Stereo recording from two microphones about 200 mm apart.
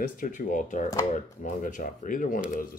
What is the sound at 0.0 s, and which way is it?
Speech, 40° left (ahead or behind).